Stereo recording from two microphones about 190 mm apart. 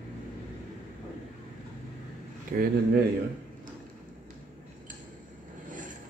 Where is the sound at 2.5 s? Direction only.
50° right (ahead or behind).